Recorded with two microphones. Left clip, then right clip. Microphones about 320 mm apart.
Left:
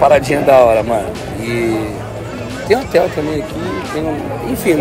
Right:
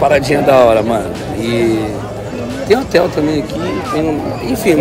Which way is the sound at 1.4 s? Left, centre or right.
Right.